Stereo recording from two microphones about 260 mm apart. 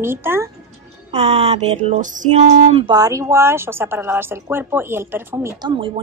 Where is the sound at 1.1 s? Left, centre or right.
Right.